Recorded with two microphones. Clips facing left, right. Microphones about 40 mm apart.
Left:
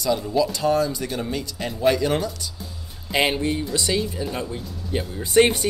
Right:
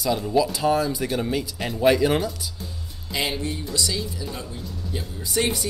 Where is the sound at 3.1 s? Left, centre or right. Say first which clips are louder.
Left 6 dB; left.